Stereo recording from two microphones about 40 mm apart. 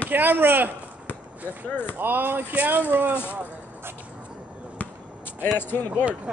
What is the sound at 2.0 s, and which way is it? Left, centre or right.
Speech, right.